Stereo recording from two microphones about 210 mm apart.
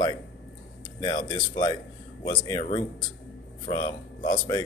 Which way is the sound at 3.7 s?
20° left (ahead or behind).